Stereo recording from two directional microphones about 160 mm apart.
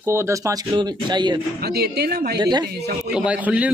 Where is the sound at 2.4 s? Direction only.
25° right (ahead or behind).